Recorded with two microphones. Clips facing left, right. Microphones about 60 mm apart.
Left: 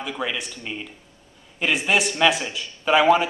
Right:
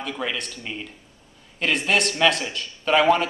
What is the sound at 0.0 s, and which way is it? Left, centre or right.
A man's voice, centre.